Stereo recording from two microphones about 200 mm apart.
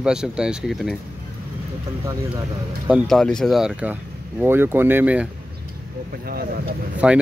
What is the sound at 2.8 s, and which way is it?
Speech, centre (ahead or behind).